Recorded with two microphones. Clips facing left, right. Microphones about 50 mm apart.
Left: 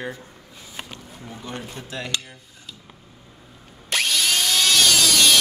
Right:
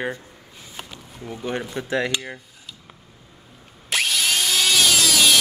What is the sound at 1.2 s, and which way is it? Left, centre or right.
Speech, right.